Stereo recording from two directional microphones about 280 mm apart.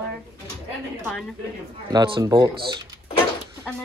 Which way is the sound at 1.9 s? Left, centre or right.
Centre.